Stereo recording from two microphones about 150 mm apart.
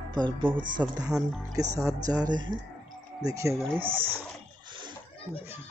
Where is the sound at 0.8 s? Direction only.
20° right (ahead or behind).